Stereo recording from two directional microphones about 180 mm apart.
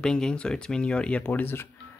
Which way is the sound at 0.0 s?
5° left (ahead or behind).